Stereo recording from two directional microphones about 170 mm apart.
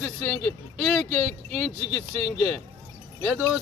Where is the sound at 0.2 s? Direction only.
35° right (ahead or behind).